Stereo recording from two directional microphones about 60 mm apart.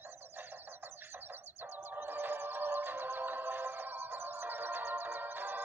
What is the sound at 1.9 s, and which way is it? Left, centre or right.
Music, right.